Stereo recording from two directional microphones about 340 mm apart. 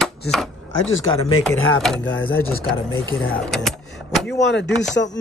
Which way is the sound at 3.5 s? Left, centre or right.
Centre.